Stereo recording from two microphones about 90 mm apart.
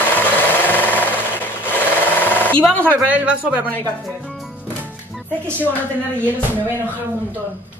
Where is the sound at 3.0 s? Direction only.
15° right (ahead or behind).